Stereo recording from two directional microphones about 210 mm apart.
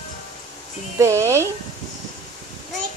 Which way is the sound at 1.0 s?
15° right (ahead or behind).